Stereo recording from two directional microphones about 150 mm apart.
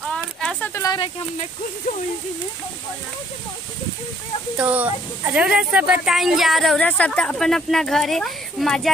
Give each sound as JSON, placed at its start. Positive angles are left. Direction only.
{"t": 0.1, "sound": "a sound", "side_deg": 5}
{"t": 0.7, "sound": "speech", "side_deg": 25}
{"t": 4.6, "sound": "speech", "side_deg": -10}